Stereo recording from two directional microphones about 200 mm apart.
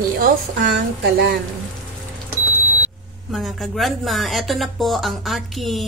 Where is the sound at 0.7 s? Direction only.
55° right (ahead or behind).